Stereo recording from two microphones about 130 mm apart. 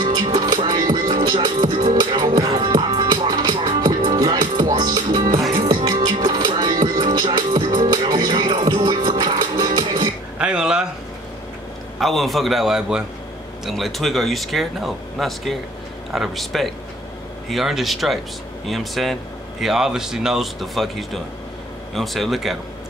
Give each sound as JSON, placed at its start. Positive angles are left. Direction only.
{"t": 0.0, "sound": "music", "side_deg": -35}
{"t": 10.4, "sound": "a sound", "side_deg": -5}
{"t": 12.0, "sound": "speech", "side_deg": 0}